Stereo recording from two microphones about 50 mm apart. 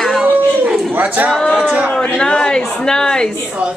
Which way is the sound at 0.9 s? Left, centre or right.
Right.